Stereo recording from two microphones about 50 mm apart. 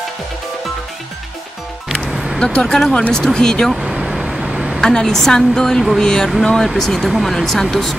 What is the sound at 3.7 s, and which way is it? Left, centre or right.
Vehicle, centre.